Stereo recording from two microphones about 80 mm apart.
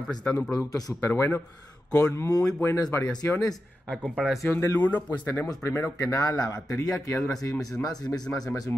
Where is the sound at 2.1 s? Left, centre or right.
Left.